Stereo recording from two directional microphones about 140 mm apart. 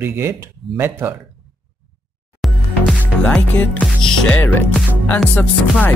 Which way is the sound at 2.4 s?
Centre (ahead or behind).